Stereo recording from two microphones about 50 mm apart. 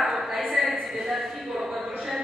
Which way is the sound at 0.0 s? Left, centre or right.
Centre.